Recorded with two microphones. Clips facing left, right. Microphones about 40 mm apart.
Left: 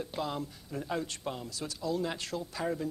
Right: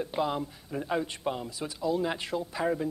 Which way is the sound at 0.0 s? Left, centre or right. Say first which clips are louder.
Right 5 dB; right.